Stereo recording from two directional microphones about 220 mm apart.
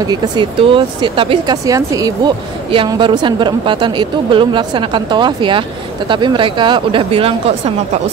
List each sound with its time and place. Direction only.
0.0 s speech: 20° right (ahead or behind)